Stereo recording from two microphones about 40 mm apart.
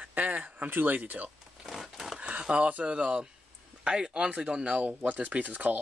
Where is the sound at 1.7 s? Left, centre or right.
Centre.